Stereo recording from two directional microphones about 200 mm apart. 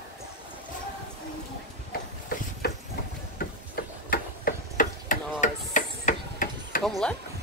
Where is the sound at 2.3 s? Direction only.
45° left (ahead or behind).